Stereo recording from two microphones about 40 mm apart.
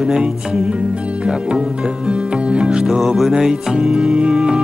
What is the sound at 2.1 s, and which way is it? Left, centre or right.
Music, right.